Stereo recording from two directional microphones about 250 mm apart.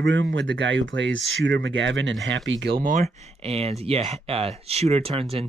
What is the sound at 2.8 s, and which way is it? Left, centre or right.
Speech, right.